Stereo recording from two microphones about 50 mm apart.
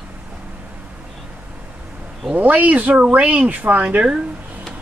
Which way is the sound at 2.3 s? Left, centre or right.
Right.